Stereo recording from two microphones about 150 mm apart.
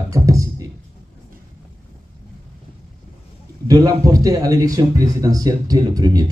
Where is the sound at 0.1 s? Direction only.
20° right (ahead or behind).